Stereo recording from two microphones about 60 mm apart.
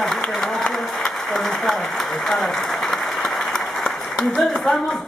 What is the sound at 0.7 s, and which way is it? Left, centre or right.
Applause, centre.